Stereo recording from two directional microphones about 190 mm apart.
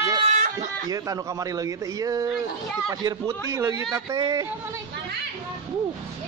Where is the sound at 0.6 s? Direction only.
20° right (ahead or behind).